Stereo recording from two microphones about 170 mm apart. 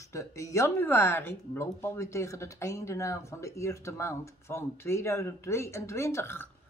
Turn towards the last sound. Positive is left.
turn(degrees=15)  # may be behind; listen again after turning